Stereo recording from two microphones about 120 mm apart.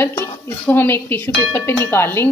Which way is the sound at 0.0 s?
20° left (ahead or behind).